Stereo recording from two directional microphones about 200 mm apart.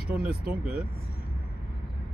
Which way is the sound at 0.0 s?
50° right (ahead or behind).